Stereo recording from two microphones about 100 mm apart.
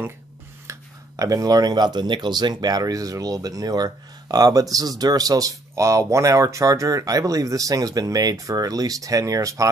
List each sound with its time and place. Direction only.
0.7 s speech: 35° right (ahead or behind)